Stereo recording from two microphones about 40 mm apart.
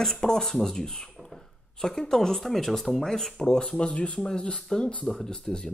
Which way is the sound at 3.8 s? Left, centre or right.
Left.